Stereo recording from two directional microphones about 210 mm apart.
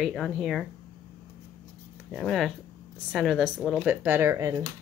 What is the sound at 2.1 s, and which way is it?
A woman's voice, centre (ahead or behind).